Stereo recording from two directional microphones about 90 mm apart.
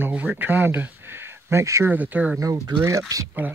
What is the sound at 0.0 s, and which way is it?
Speech, 20° right (ahead or behind).